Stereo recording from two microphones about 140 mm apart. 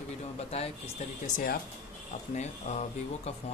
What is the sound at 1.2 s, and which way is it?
Speech, 90° left.